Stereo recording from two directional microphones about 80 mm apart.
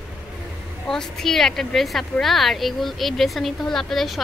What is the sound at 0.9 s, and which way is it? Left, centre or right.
A woman's voice, centre.